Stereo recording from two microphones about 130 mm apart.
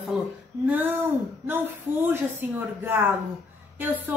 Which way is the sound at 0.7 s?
15° right (ahead or behind).